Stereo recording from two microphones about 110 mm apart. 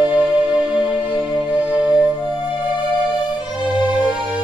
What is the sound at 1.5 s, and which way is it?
Music, 10° right (ahead or behind).